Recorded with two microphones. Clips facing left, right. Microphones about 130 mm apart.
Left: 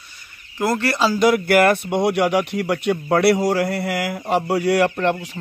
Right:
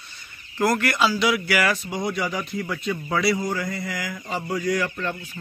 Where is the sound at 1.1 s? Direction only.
50° left (ahead or behind).